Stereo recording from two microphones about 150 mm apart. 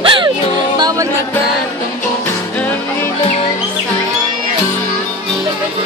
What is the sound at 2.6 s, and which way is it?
Music, 10° left (ahead or behind).